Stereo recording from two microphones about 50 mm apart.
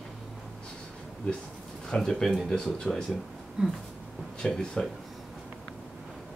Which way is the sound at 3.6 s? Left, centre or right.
Centre.